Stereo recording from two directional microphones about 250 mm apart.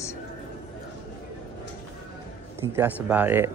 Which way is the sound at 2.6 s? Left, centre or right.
Centre.